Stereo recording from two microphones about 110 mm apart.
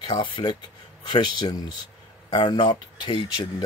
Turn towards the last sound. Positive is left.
turn(degrees=45)  # may be behind; listen again after turning